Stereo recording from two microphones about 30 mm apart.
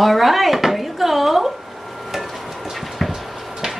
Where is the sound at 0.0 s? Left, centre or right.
Centre.